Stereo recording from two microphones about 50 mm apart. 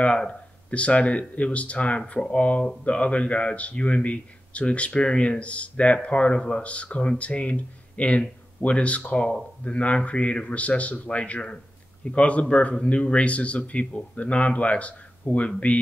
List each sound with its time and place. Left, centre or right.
0.7 s speech: left